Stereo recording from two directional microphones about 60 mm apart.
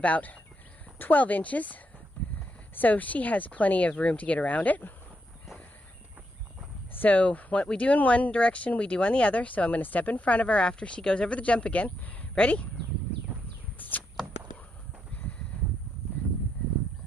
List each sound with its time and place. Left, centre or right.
0.0 s speech: left
6.9 s speech: left
13.7 s a sound: left